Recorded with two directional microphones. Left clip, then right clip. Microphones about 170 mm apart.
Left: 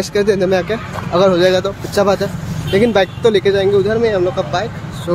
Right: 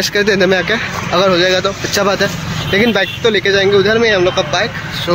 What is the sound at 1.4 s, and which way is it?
Speech, 20° left (ahead or behind).